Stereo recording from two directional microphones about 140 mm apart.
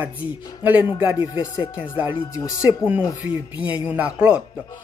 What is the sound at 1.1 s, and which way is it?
Speech, 30° left (ahead or behind).